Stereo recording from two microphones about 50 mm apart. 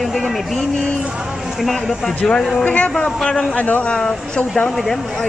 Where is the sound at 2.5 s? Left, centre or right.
Left.